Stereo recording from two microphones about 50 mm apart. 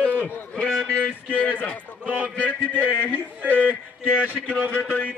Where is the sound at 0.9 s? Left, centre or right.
Left.